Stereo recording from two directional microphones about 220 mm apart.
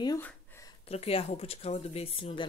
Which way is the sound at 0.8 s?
25° left (ahead or behind).